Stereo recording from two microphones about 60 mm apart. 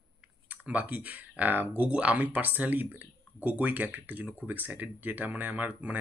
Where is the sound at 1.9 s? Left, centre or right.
Right.